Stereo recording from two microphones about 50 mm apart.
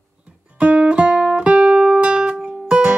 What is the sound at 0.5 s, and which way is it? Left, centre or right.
Music, right.